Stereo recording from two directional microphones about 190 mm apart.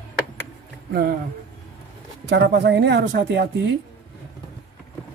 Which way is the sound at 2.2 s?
65° right (ahead or behind).